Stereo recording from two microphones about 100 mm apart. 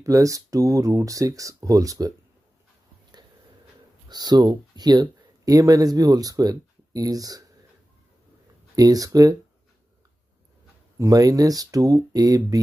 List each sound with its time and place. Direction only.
0.0 s speech: 35° right (ahead or behind)
4.1 s speech: 40° right (ahead or behind)
8.7 s speech: 35° right (ahead or behind)
11.0 s speech: 35° right (ahead or behind)